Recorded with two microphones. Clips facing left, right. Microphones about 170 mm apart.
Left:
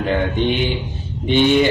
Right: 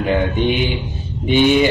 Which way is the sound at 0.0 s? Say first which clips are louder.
Right 1 dB; 10° right (ahead or behind).